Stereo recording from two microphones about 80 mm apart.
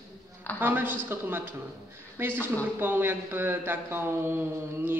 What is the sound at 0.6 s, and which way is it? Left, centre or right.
A man's voice, right.